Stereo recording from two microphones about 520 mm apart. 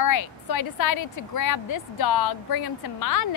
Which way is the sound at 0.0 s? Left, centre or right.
Left.